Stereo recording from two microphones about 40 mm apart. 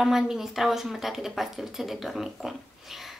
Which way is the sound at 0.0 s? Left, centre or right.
Centre.